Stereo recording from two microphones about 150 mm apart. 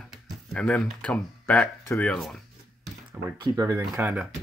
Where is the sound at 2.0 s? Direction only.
5° left (ahead or behind).